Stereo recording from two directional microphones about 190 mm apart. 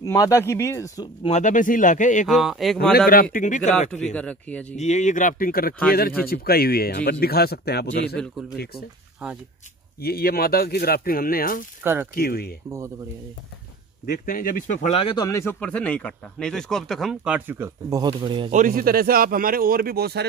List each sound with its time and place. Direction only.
0.0 s speech: 15° left (ahead or behind)
1.2 s speech: 40° left (ahead or behind)
2.2 s a man's voice: centre (ahead or behind)
3.1 s speech: 50° left (ahead or behind)
3.9 s speech: 5° left (ahead or behind)
4.7 s speech: 35° left (ahead or behind); by 8.2 s 55° left (ahead or behind)
9.9 s speech: 55° left (ahead or behind)
11.8 s speech: 10° right (ahead or behind)
12.2 s speech: 55° left (ahead or behind)
14.0 s a man's voice: 50° left (ahead or behind); by 18.5 s 25° right (ahead or behind)
18.5 s speech: 45° right (ahead or behind)